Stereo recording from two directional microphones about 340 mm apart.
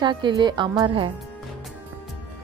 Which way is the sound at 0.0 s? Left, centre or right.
Centre.